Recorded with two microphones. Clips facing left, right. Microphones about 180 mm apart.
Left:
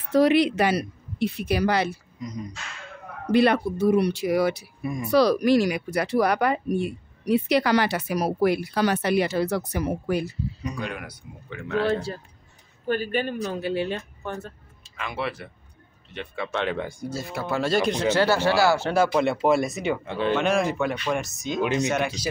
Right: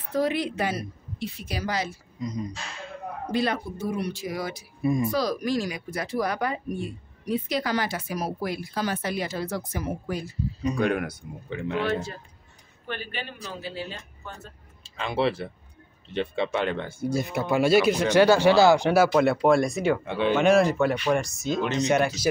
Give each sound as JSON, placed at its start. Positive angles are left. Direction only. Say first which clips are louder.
{"t": 0.1, "sound": "speech", "louder": "left 7 dB", "side_deg": 80}
{"t": 2.2, "sound": "speech", "louder": "right 3 dB", "side_deg": -30}
{"t": 3.3, "sound": "speech", "louder": "left 7 dB", "side_deg": 65}
{"t": 4.8, "sound": "speech", "louder": "right 6 dB", "side_deg": -25}
{"t": 5.1, "sound": "speech", "louder": "left 7 dB", "side_deg": 70}
{"t": 10.8, "sound": "speech", "louder": "right 8 dB", "side_deg": -50}
{"t": 11.8, "sound": "speech", "louder": "left 5 dB", "side_deg": 30}
{"t": 12.8, "sound": "speech", "louder": "left 10 dB", "side_deg": 40}
{"t": 14.8, "sound": "speech", "louder": "right 5 dB", "side_deg": -30}
{"t": 16.7, "sound": "speech", "louder": "even", "side_deg": 15}
{"t": 17.1, "sound": "speech", "louder": "right 5 dB", "side_deg": -20}
{"t": 19.0, "sound": "speech", "louder": "right 1 dB", "side_deg": 0}